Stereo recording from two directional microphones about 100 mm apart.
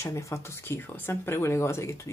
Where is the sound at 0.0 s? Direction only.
30° left (ahead or behind).